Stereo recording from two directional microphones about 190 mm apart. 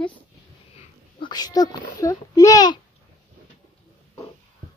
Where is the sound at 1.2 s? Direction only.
20° left (ahead or behind).